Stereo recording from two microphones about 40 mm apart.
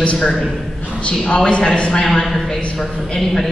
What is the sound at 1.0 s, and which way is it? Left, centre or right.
A man's voice, left.